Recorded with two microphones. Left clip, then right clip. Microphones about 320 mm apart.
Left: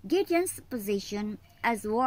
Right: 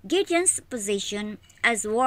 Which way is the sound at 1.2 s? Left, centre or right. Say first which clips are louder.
Right 7 dB; centre.